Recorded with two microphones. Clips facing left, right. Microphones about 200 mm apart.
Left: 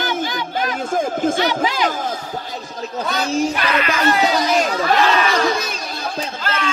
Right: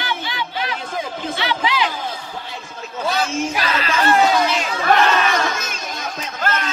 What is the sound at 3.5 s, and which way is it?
Speech, 35° right (ahead or behind).